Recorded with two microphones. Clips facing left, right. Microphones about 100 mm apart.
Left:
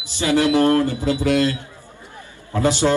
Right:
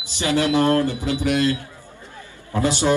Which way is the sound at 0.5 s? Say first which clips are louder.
Left 2 dB; 20° right (ahead or behind).